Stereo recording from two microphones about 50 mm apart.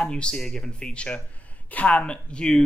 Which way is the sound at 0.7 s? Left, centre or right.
Left.